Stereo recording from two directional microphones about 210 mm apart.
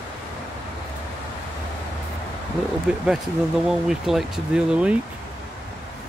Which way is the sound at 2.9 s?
5° right (ahead or behind).